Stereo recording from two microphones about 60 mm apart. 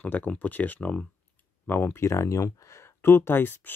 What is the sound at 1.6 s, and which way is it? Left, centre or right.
Speech, left.